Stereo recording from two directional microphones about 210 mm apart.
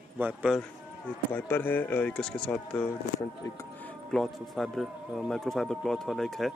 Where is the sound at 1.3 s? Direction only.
10° left (ahead or behind).